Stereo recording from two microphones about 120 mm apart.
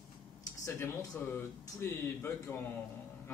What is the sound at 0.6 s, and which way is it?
Speech, 20° left (ahead or behind).